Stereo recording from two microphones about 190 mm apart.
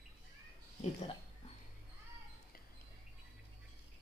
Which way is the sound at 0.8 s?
30° left (ahead or behind).